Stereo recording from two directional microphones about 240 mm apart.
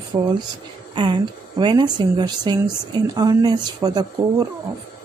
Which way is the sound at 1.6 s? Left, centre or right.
Centre.